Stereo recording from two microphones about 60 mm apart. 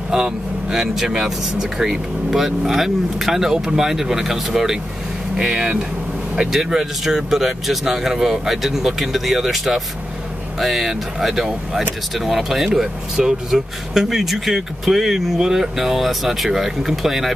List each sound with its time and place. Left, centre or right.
0.1 s speech: centre
5.5 s speech: centre